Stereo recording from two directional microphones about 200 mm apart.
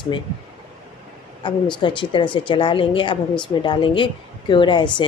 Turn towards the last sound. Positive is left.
turn(degrees=25)  # may be behind; listen again after turning